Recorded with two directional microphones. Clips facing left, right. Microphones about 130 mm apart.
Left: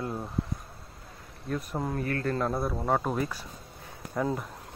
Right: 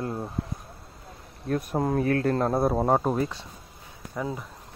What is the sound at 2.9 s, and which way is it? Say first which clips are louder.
Speech: right 4 dB; 30° right (ahead or behind).